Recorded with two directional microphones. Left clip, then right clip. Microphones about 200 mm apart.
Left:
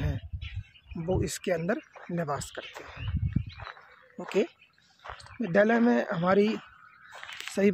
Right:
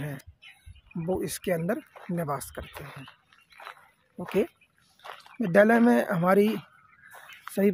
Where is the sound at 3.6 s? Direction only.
5° right (ahead or behind).